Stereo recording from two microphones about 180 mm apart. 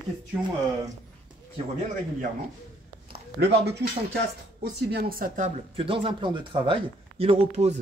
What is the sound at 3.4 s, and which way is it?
Speech, 70° right (ahead or behind).